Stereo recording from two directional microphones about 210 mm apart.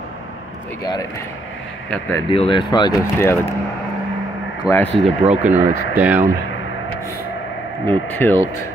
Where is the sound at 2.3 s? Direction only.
25° left (ahead or behind).